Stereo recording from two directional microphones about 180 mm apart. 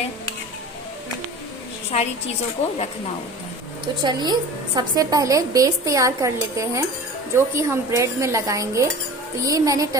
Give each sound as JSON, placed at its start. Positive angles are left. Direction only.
{"t": 1.9, "sound": "a woman's voice", "side_deg": 40}
{"t": 4.0, "sound": "a woman's voice", "side_deg": -25}